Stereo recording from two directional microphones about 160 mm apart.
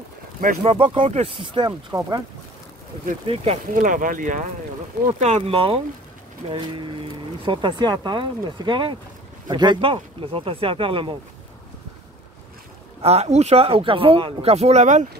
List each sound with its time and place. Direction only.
0.7 s speech: 35° right (ahead or behind)
3.7 s speech: 55° right (ahead or behind); by 11.1 s 35° right (ahead or behind)
13.0 s speech: 40° right (ahead or behind)